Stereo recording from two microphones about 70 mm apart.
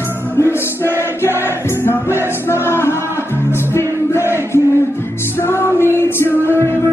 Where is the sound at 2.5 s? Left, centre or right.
Left.